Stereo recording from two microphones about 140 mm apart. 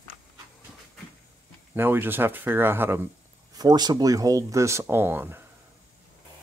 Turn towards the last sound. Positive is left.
turn(degrees=-15)  # may be behind; listen again after turning